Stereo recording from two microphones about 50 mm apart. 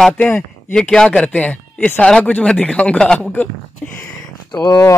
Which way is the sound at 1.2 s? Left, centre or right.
Left.